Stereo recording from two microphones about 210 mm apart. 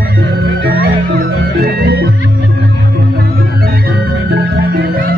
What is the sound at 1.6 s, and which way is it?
Music, 45° right (ahead or behind).